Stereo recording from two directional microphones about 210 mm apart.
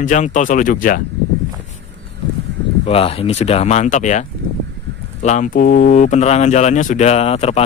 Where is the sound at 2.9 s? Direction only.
25° left (ahead or behind).